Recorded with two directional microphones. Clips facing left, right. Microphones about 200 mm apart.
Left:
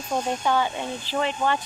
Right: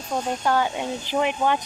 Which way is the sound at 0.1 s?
Centre (ahead or behind).